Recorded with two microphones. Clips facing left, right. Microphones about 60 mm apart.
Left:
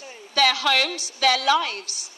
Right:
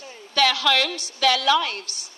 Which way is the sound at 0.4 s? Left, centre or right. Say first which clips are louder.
Even; right.